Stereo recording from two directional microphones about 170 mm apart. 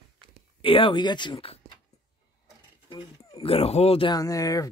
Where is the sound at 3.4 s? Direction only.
35° left (ahead or behind); by 4.6 s 20° left (ahead or behind).